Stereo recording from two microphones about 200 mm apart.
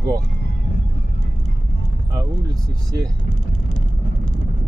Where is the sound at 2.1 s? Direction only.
20° right (ahead or behind).